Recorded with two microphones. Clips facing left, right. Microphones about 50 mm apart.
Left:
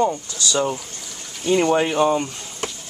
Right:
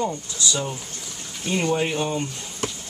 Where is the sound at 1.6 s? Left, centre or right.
Left.